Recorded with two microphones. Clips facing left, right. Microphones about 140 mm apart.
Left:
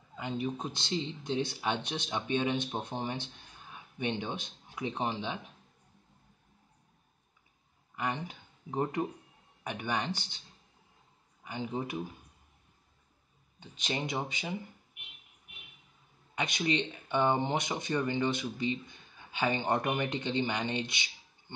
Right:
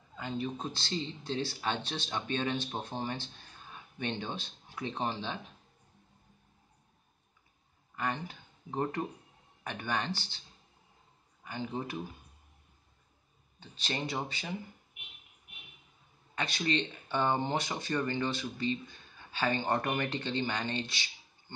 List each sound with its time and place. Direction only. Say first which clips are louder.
0.1 s speech: left 1 dB; 15° left (ahead or behind)
7.9 s speech: even; 15° left (ahead or behind)
11.4 s speech: left 1 dB; 15° left (ahead or behind)
13.6 s speech: left 1 dB; 15° left (ahead or behind)
16.3 s speech: left 1 dB; 15° left (ahead or behind)